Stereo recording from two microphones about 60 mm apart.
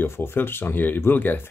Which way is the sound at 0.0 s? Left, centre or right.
Left.